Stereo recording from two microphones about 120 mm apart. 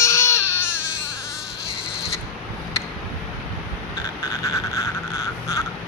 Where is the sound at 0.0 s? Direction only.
25° left (ahead or behind).